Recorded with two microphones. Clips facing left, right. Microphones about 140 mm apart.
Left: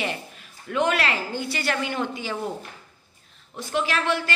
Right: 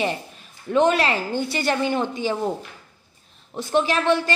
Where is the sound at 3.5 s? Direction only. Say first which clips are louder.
Right 5 dB; 30° right (ahead or behind).